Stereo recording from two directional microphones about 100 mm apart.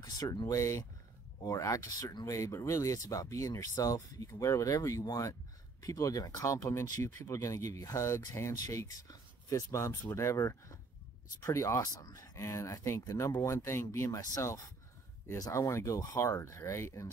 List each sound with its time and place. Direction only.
0.0 s speech: 40° left (ahead or behind)